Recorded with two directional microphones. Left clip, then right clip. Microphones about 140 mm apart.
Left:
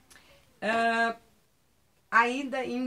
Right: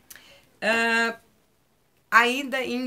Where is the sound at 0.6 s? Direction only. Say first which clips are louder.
Right 4 dB; 5° right (ahead or behind).